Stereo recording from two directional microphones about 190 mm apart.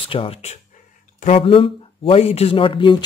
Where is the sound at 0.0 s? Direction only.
30° left (ahead or behind).